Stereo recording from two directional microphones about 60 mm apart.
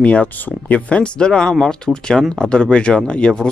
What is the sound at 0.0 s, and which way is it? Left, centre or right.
Speech, left.